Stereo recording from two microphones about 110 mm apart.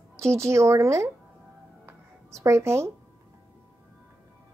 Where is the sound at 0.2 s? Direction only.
25° right (ahead or behind).